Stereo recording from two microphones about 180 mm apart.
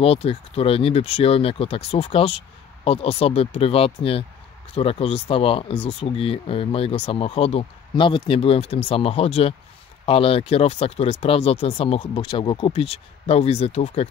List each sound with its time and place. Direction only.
0.0 s speech: 30° left (ahead or behind)